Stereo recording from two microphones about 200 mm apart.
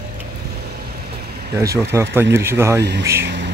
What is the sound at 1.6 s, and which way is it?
Speech, 15° right (ahead or behind).